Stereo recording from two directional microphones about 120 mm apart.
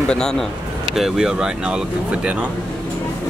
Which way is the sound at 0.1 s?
5° left (ahead or behind).